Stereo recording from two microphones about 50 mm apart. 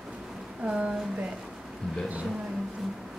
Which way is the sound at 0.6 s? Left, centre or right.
Right.